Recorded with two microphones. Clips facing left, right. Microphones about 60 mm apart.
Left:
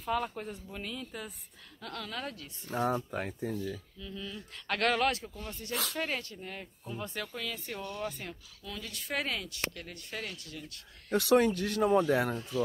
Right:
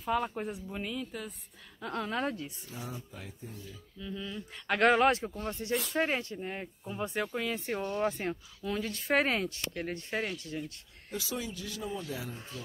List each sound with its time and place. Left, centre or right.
0.0 s speech: centre
1.8 s speech: right
2.7 s speech: left
4.0 s speech: centre; by 10.6 s right
11.1 s speech: left